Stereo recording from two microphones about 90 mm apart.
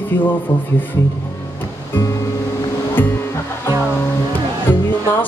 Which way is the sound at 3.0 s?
25° left (ahead or behind).